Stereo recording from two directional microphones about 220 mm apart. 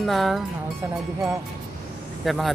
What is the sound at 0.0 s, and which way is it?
Speech, centre (ahead or behind).